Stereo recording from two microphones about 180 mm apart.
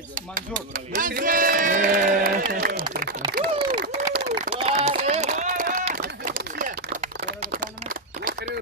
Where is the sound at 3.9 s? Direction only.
35° right (ahead or behind).